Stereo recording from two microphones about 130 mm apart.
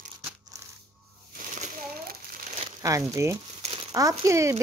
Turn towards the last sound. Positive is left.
turn(degrees=-20)  # may be behind; listen again after turning